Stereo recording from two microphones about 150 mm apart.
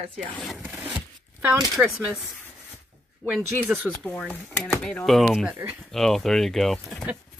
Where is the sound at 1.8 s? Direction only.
10° right (ahead or behind).